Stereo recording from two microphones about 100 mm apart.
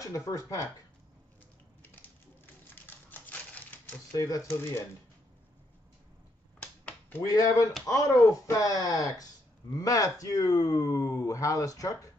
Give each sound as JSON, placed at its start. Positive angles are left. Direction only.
{"t": 0.0, "sound": "speech", "side_deg": 30}
{"t": 2.7, "sound": "typewriter", "side_deg": 20}
{"t": 4.1, "sound": "speech", "side_deg": 30}
{"t": 7.2, "sound": "speech", "side_deg": 40}